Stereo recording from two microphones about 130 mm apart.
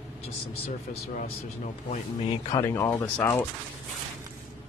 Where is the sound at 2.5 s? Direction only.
25° left (ahead or behind).